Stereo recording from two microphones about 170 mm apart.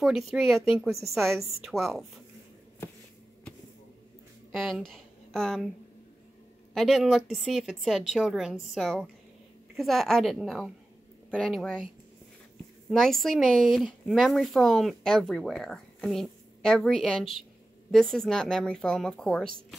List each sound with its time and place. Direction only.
0.0 s speech: centre (ahead or behind)
4.5 s speech: centre (ahead or behind)
6.7 s speech: centre (ahead or behind)
13.0 s speech: centre (ahead or behind)